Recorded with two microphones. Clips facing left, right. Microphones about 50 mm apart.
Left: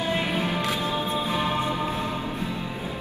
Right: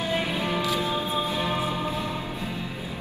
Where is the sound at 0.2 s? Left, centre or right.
Left.